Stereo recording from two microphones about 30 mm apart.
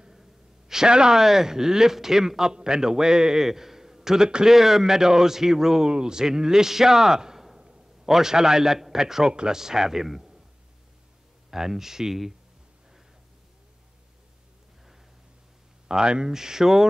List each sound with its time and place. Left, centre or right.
0.1 s a sound: centre
0.8 s a man's voice: right
1.1 s a man's voice: centre
2.5 s a man's voice: right; by 10.2 s centre
11.5 s a man's voice: centre
15.9 s a man's voice: right